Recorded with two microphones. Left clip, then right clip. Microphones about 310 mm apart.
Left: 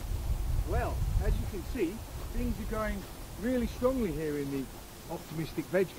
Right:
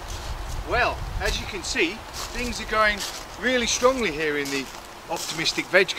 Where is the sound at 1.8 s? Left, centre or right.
Centre.